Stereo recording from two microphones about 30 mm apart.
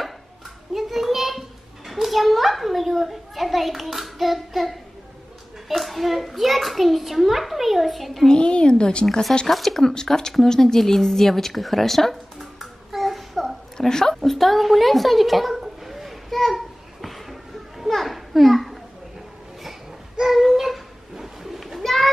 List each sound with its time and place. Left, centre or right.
0.7 s a sound: centre
1.9 s a child's voice: centre
8.3 s a woman's voice: left
9.5 s a child's voice: centre
9.8 s speech: centre
12.5 s child singing: centre
13.7 s a woman's voice: left
14.2 s a woman's voice: centre
16.5 s a sound: centre
20.2 s pigeon: centre
21.8 s children playing: centre